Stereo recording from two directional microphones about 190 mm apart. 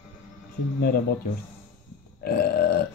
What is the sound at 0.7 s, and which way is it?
Speech, 55° left (ahead or behind).